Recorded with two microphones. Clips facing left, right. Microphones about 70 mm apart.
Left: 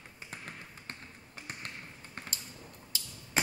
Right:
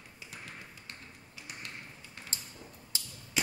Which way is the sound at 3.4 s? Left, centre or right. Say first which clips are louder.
Left 2 dB; left.